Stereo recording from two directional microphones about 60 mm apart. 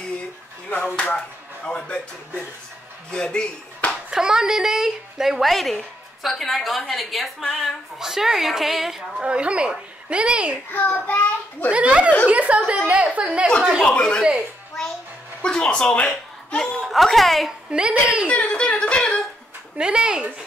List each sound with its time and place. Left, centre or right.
0.7 s speech: left
4.1 s a woman's voice: centre
8.0 s a woman's voice: centre
9.2 s a woman's voice: centre
10.7 s a child's voice: left
11.7 s a woman's voice: centre
13.6 s a woman's voice: centre
13.8 s speech: centre
15.4 s speech: centre
16.8 s a woman's voice: centre
17.6 s a woman's voice: centre
18.2 s a sound: left
19.8 s a woman's voice: centre